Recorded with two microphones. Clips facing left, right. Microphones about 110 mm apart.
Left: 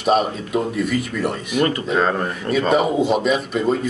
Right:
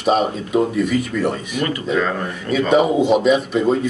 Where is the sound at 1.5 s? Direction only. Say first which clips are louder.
Left 4 dB; 40° left (ahead or behind).